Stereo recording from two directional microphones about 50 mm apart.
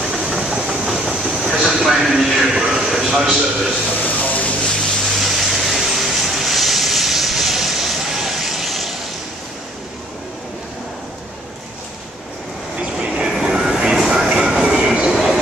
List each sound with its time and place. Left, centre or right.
0.2 s train: centre
2.5 s a sound: centre
4.0 s a sound: left
5.2 s vehicle: centre
12.8 s train: centre
13.3 s vehicle: centre
13.9 s train: centre